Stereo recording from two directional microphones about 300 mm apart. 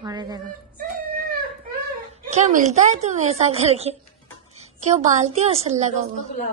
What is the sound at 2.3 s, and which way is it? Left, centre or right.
A woman's voice, right.